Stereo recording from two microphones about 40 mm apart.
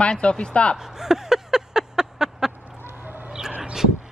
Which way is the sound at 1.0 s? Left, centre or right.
Centre.